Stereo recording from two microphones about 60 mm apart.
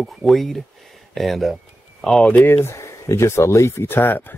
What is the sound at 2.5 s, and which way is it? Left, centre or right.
Speech, left.